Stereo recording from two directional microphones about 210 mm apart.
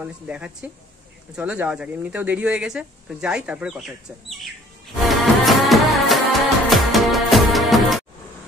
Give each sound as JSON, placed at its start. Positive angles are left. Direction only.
{"t": 0.0, "sound": "speech", "side_deg": -5}
{"t": 5.0, "sound": "music", "side_deg": 0}